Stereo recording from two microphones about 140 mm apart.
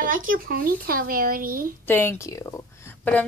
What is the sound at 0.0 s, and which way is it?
Speech, 80° right.